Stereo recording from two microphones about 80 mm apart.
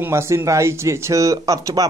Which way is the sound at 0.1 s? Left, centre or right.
Right.